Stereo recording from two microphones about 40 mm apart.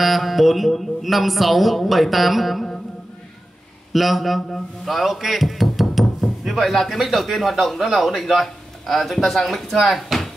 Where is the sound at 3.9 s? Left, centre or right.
Centre.